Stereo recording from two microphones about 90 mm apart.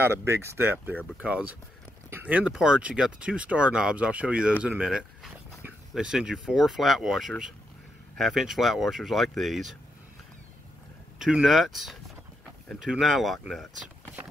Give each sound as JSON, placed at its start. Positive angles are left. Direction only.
{"t": 0.0, "sound": "speech", "side_deg": -30}
{"t": 1.1, "sound": "speech", "side_deg": -15}
{"t": 4.8, "sound": "speech", "side_deg": 0}
{"t": 11.1, "sound": "speech", "side_deg": -5}